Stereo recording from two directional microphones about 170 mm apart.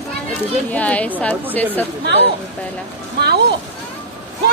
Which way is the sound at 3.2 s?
80° right.